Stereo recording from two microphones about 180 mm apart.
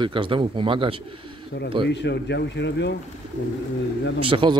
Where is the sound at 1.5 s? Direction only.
65° left (ahead or behind).